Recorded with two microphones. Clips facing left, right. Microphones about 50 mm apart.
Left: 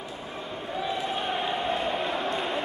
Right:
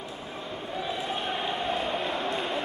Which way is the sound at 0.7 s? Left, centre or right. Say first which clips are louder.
Left 2 dB; centre.